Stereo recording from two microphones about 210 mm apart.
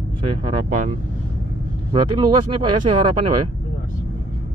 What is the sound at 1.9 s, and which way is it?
Speech, 20° right (ahead or behind).